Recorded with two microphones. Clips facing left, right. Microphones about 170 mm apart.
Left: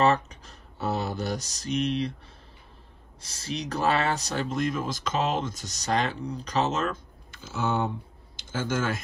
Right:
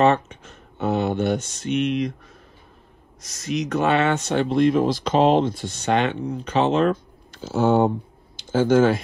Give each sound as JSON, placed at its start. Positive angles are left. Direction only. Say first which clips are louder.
{"t": 0.0, "sound": "speech", "louder": "right 5 dB", "side_deg": 35}
{"t": 7.3, "sound": "speech", "louder": "right 10 dB", "side_deg": -55}